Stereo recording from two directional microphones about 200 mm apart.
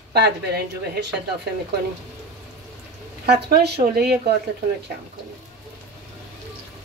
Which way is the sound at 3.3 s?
55° right (ahead or behind).